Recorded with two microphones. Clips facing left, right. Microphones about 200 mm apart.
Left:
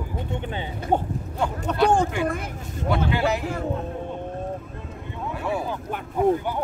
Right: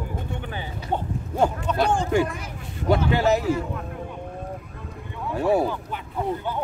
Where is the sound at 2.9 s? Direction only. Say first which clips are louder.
Right 3 dB; 40° right (ahead or behind).